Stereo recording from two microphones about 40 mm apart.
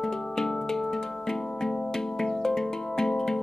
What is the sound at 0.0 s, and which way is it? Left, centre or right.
Music, centre.